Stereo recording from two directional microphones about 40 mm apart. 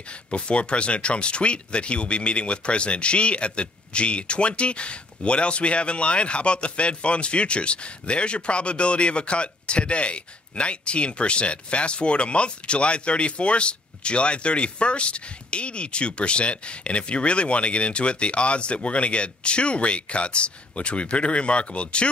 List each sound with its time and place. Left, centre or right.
0.3 s speech: left